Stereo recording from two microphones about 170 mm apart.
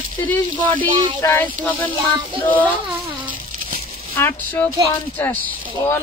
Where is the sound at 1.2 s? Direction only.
10° left (ahead or behind).